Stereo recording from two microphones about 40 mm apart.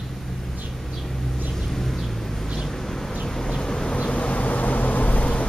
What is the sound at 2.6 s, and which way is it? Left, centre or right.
Bee, centre.